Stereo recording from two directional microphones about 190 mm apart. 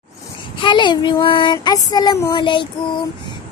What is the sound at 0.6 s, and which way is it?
Speech, 25° left (ahead or behind).